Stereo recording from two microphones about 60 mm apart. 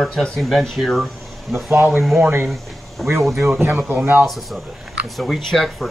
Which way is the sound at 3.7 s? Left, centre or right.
Right.